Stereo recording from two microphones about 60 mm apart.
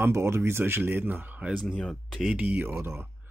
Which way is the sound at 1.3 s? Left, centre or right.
Centre.